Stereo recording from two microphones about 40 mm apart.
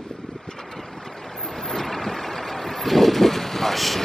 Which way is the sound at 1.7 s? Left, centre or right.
Centre.